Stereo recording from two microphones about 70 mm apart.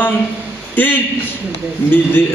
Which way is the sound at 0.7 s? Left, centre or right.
Left.